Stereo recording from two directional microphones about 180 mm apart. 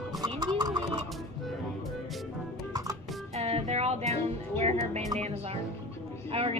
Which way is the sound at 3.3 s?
35° right (ahead or behind).